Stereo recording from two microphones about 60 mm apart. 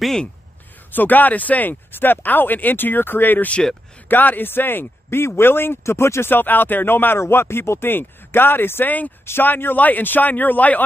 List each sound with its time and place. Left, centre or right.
0.9 s speech: left
6.3 s speech: left
9.2 s speech: left